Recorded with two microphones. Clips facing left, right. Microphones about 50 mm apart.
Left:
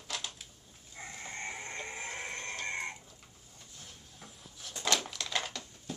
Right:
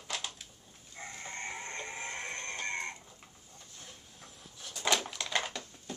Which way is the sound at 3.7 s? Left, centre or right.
Centre.